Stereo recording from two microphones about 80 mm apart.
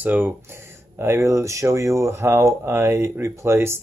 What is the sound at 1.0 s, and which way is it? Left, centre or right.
Speech, right.